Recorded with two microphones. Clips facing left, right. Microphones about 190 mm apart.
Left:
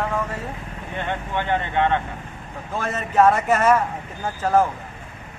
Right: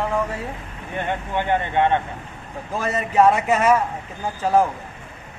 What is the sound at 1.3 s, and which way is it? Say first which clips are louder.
Speech: right 2 dB; 15° right (ahead or behind).